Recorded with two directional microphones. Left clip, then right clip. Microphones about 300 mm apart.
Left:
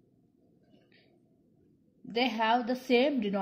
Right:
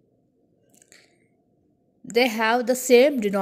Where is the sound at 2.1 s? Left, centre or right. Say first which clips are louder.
Right 7 dB; right.